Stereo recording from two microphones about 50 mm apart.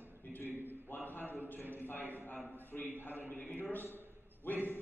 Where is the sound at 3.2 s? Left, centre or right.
Left.